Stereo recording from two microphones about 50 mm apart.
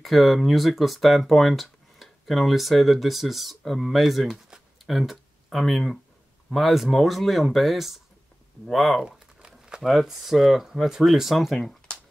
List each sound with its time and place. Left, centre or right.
0.0 s speech: centre
9.0 s crumpling: centre
9.8 s speech: centre